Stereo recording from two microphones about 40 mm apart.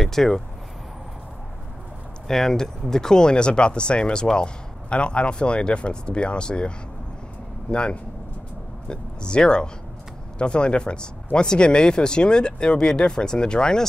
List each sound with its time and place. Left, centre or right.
0.0 s speech: centre
2.2 s speech: centre